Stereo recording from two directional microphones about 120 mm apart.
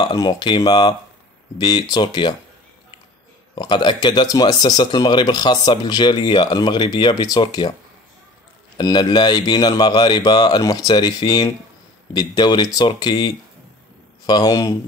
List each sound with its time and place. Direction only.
0.0 s speech: 35° left (ahead or behind)
3.5 s speech: 40° left (ahead or behind)
8.7 s speech: 40° left (ahead or behind)